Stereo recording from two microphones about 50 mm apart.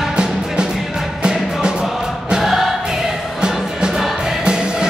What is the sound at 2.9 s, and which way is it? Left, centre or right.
Music, centre.